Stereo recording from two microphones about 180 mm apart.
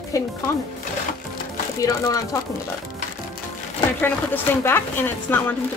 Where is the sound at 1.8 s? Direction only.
15° left (ahead or behind).